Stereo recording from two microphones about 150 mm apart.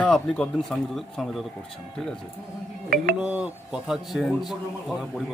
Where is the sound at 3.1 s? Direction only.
5° right (ahead or behind).